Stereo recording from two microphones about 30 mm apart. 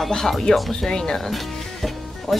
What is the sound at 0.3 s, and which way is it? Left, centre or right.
Speech, centre.